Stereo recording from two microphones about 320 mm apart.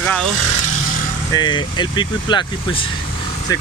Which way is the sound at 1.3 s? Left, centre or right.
Centre.